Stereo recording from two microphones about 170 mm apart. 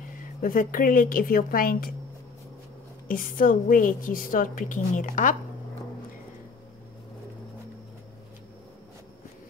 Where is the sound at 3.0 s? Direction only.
55° left (ahead or behind).